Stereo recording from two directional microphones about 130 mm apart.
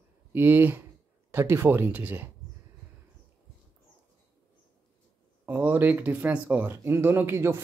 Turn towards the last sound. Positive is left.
turn(degrees=-20)  # may be behind; listen again after turning